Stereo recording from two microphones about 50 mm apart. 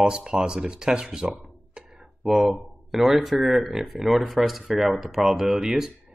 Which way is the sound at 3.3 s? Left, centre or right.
Centre.